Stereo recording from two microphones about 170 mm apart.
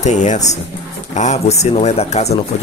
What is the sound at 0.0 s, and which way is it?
Speech, 45° left (ahead or behind).